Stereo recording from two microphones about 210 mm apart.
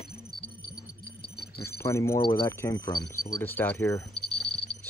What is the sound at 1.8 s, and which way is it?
Speech, 15° left (ahead or behind).